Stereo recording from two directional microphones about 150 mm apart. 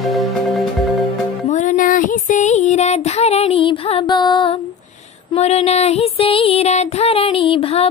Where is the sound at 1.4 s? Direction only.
55° left (ahead or behind); by 4.6 s 30° left (ahead or behind).